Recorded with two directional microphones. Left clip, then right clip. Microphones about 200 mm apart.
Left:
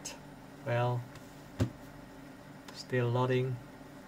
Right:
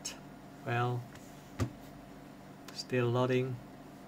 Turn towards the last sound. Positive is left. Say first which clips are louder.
# even
turn(degrees=-20)  # may be behind; listen again after turning